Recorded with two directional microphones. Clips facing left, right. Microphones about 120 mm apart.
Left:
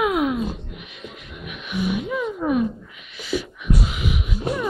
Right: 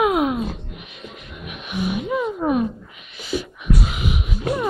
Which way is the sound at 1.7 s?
35° right (ahead or behind).